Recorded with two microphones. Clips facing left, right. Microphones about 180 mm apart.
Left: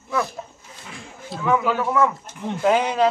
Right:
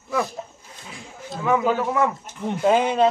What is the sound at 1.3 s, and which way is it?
A man's voice, 20° right (ahead or behind).